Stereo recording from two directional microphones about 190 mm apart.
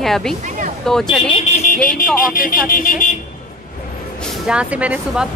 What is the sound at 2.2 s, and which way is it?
Speech, 50° left (ahead or behind).